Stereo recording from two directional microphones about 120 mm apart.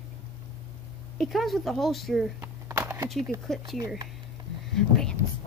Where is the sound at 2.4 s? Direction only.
20° right (ahead or behind).